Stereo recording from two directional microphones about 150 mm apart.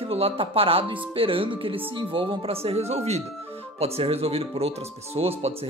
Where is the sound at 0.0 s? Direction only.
40° right (ahead or behind).